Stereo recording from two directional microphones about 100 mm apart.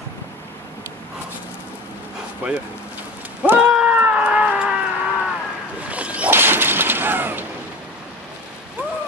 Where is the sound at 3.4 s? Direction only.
15° right (ahead or behind).